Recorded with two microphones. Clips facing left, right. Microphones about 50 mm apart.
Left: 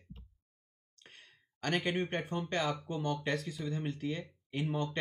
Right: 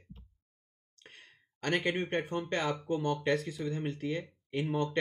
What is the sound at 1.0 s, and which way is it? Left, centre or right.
Sigh, centre.